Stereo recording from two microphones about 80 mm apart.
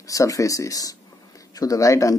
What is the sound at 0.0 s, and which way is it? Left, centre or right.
Speech, left.